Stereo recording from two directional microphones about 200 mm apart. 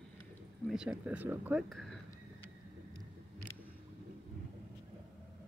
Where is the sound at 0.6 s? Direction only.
5° right (ahead or behind).